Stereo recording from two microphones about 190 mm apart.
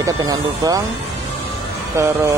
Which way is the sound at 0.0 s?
20° right (ahead or behind).